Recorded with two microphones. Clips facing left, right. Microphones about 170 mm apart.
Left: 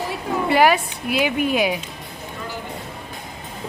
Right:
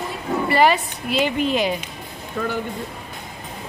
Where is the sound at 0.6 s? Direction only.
5° left (ahead or behind).